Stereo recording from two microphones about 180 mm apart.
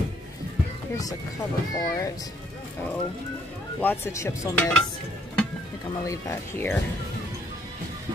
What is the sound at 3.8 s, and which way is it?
Speech, 15° left (ahead or behind).